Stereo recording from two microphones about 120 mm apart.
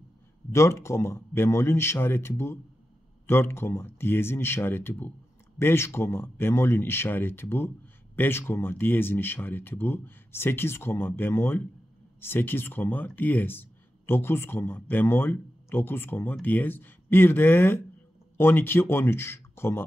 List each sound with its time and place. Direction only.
0.5 s speech: 25° left (ahead or behind)